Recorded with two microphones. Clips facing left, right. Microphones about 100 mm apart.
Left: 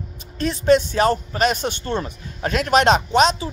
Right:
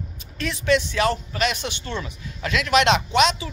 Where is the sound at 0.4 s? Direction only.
40° left (ahead or behind).